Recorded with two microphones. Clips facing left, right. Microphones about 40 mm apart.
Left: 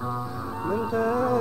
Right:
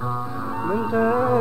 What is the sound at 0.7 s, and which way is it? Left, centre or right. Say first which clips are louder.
Music: right 4 dB; right.